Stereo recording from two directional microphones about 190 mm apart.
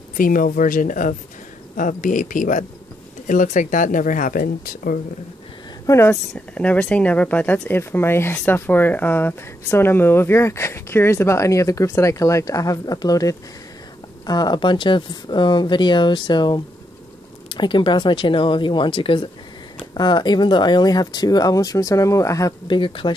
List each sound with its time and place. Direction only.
0.2 s speech: 45° left (ahead or behind)
5.9 s speech: 15° left (ahead or behind)